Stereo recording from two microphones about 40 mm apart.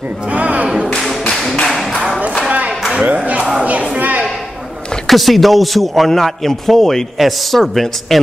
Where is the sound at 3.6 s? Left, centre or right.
Right.